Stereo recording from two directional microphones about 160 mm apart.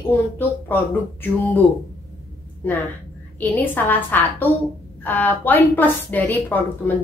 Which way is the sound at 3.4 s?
10° left (ahead or behind).